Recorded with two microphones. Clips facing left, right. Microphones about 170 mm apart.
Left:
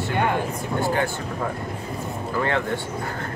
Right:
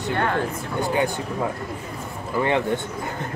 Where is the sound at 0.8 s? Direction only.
20° right (ahead or behind).